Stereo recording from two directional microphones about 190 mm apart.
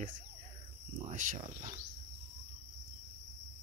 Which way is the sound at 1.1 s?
45° right (ahead or behind).